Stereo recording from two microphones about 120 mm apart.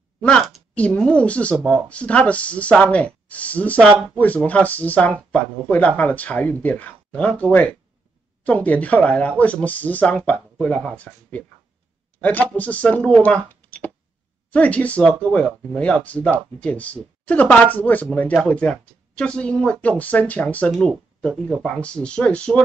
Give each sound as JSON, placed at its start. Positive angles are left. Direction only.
{"t": 0.2, "sound": "a woman's voice", "side_deg": 5}
{"t": 12.2, "sound": "speech", "side_deg": 15}